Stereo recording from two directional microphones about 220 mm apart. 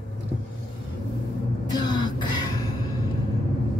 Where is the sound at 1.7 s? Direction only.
20° left (ahead or behind).